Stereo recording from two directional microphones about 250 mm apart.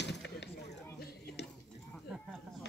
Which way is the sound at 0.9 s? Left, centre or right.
Left.